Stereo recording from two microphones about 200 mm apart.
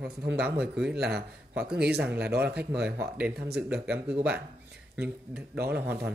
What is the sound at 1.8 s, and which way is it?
Speech, 55° right (ahead or behind).